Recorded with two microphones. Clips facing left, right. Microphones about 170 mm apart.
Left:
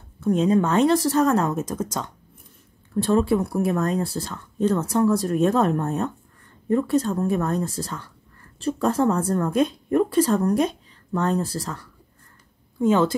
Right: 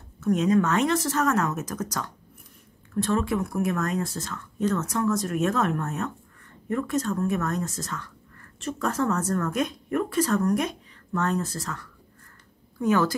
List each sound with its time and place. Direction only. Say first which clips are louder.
0.2 s a woman's voice: left 2 dB; 30° left (ahead or behind)